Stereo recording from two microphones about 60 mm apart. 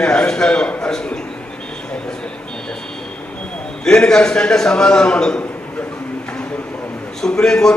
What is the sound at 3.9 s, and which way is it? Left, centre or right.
A man's voice, centre.